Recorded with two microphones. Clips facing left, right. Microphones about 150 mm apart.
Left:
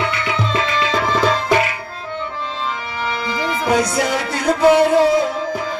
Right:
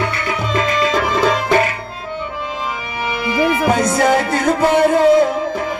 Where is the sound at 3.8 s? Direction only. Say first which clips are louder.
Right 4 dB; 50° right (ahead or behind).